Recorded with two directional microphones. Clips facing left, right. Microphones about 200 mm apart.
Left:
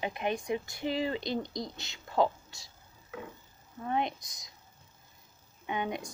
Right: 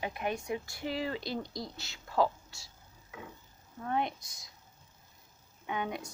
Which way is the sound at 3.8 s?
15° left (ahead or behind).